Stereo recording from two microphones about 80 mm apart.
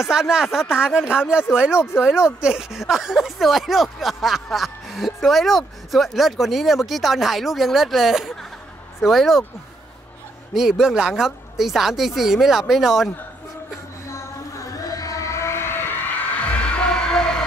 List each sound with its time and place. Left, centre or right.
0.0 s speech: centre
10.5 s speech: centre
14.1 s a sound: left; by 17.5 s centre